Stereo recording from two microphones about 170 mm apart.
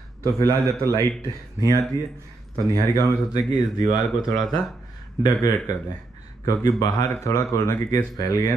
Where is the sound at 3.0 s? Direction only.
20° left (ahead or behind).